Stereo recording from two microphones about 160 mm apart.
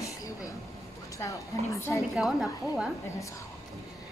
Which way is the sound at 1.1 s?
20° left (ahead or behind).